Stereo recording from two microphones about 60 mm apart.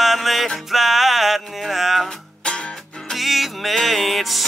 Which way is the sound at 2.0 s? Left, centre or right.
Centre.